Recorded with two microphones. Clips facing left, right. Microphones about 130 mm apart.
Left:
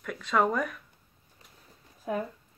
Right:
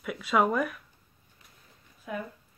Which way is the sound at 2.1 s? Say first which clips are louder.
Left 4 dB; 35° left (ahead or behind).